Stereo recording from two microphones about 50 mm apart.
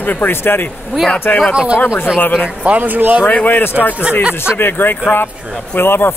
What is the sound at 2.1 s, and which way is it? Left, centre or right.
Speech, left.